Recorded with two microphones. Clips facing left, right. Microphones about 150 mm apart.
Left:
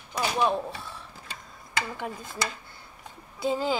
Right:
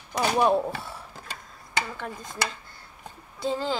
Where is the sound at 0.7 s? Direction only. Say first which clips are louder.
Right 3 dB; 60° right (ahead or behind).